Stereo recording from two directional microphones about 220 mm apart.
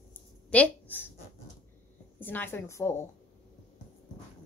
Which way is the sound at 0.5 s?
5° left (ahead or behind).